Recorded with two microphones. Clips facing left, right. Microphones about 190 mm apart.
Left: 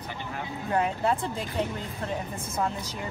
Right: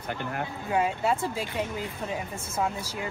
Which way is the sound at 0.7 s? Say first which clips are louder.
Even; 5° right (ahead or behind).